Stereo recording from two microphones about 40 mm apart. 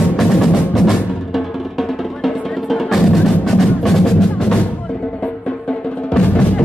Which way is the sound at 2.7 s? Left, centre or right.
Centre.